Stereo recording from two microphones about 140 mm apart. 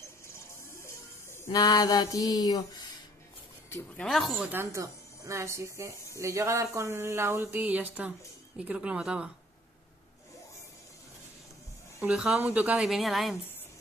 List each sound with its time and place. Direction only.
0.3 s a sound: 20° left (ahead or behind)
4.0 s speech: centre (ahead or behind)
4.5 s a woman's voice: 20° right (ahead or behind)
12.0 s a woman's voice: 5° right (ahead or behind)